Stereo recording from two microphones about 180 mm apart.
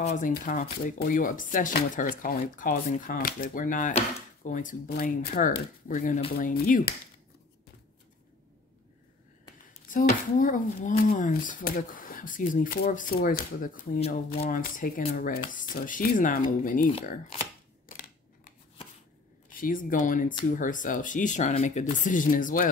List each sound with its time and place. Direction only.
0.0 s speech: 45° left (ahead or behind)
9.8 s speech: 45° left (ahead or behind)
13.9 s speech: 35° left (ahead or behind)
14.5 s speech: 50° left (ahead or behind)
17.8 s a sound: 50° left (ahead or behind)
19.6 s speech: 50° left (ahead or behind)